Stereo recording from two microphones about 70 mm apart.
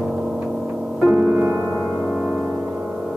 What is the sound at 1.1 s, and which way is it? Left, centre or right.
Music, right.